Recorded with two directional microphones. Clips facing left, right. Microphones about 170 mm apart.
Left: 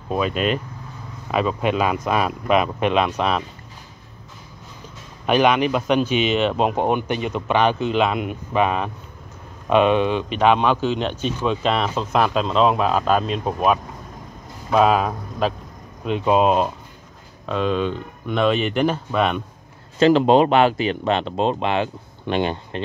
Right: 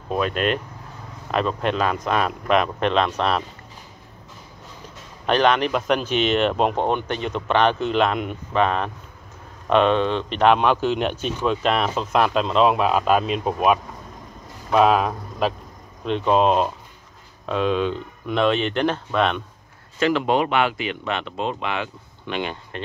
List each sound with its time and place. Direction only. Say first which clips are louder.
0.1 s speech: left 1 dB; centre (ahead or behind)
5.2 s speech: left 2 dB; 10° left (ahead or behind)
20.0 s speech: left 6 dB; 30° left (ahead or behind)